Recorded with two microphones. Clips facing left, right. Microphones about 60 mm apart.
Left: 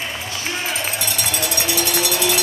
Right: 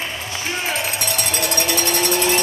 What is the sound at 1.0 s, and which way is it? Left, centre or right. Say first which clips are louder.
Cowbell: right 1 dB; right.